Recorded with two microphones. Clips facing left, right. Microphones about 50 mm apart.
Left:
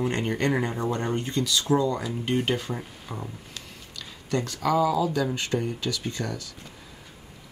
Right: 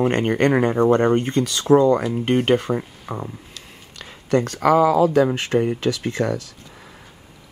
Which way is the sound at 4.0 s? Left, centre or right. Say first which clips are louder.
Right 8 dB; right.